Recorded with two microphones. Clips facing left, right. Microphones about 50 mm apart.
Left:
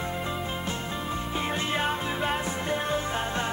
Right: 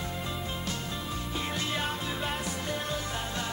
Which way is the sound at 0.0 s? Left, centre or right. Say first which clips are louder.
Left 5 dB; left.